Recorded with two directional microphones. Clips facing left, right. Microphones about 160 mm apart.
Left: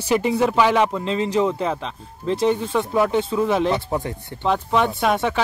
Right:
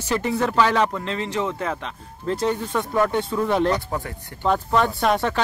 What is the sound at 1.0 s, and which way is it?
Speech, 30° left (ahead or behind).